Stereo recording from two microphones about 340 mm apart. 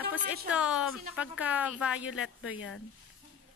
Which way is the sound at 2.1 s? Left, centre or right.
Left.